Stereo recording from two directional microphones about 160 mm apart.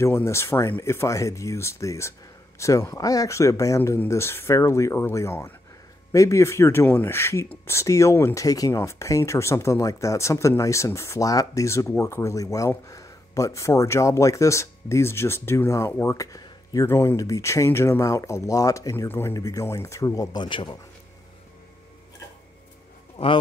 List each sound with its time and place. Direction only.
0.0 s speech: 15° left (ahead or behind)
23.1 s speech: 35° left (ahead or behind)